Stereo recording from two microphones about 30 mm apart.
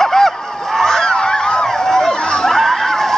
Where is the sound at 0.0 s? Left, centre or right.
Centre.